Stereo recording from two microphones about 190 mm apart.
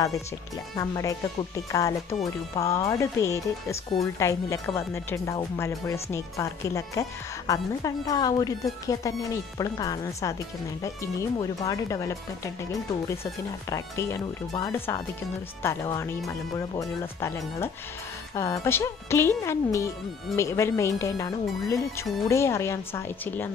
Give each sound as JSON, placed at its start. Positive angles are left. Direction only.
{"t": 0.7, "sound": "speech", "side_deg": 15}